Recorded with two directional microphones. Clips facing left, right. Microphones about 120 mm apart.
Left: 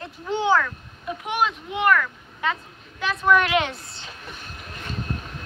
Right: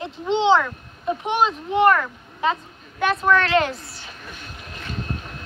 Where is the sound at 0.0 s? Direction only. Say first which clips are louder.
Right 5 dB; 25° right (ahead or behind).